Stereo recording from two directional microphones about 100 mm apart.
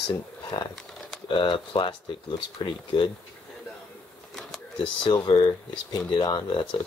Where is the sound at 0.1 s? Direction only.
40° left (ahead or behind).